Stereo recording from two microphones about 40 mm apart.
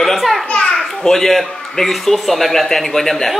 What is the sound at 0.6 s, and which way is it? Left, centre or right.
A child's voice, centre.